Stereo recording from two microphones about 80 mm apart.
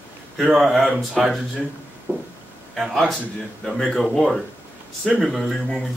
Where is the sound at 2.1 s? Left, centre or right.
Right.